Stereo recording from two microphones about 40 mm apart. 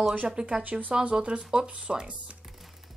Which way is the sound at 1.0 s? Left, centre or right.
Right.